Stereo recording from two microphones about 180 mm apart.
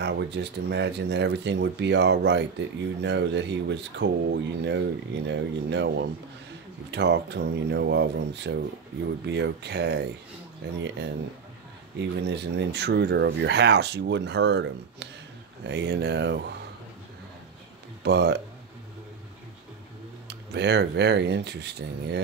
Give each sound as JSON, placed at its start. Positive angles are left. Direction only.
{"t": 0.0, "sound": "speech", "side_deg": -70}
{"t": 12.0, "sound": "speech", "side_deg": -70}
{"t": 18.0, "sound": "speech", "side_deg": -70}
{"t": 20.2, "sound": "speech", "side_deg": -70}